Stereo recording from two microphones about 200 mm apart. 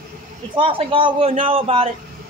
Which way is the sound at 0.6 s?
25° right (ahead or behind).